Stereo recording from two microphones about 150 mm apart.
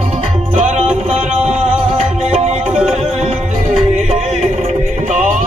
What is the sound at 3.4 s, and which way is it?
Music, 50° right (ahead or behind).